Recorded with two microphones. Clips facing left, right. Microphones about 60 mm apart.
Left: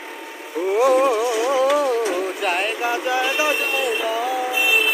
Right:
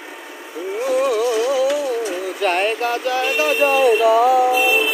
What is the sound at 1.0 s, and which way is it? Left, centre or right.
Speech, left.